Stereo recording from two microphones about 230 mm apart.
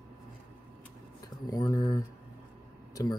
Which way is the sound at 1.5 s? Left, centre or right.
Centre.